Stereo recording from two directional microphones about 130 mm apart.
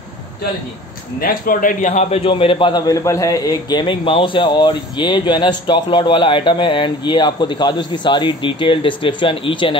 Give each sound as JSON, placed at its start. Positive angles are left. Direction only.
{"t": 1.4, "sound": "a man's voice", "side_deg": 90}